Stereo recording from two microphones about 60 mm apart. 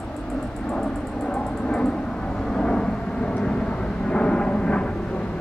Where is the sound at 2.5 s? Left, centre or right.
Centre.